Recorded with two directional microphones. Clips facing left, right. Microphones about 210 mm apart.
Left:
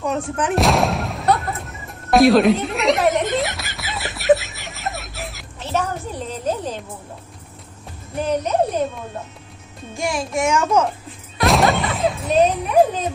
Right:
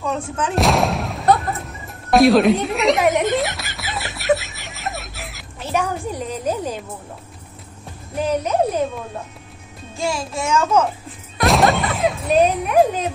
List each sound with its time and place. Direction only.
0.0 s a child's voice: 15° left (ahead or behind)
0.6 s music: centre (ahead or behind)
5.6 s music: 10° right (ahead or behind)
9.9 s a child's voice: 15° left (ahead or behind)
11.4 s a sound: centre (ahead or behind)